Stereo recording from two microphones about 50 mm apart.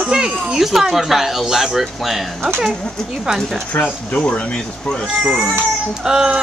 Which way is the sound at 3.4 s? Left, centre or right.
Centre.